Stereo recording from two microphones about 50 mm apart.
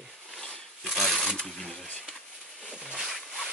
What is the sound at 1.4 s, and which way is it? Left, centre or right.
Speech, centre.